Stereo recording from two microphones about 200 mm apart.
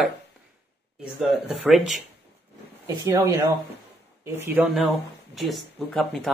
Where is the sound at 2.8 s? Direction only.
15° right (ahead or behind).